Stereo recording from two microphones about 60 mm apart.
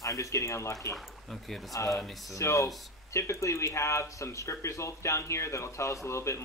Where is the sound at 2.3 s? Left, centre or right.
Left.